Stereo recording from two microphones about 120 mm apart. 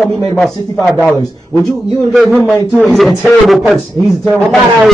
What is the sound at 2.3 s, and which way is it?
Speech, 20° right (ahead or behind).